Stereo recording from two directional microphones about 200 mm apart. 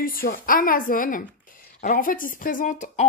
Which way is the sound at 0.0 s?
45° left (ahead or behind).